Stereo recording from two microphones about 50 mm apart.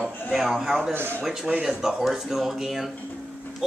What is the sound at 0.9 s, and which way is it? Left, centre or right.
Speech, right.